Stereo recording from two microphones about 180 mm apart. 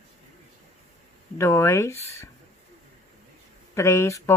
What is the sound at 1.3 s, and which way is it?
Speech, 15° left (ahead or behind).